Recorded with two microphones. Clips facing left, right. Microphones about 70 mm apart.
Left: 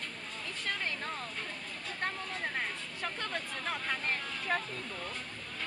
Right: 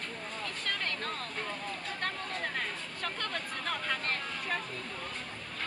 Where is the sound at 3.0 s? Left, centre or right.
Centre.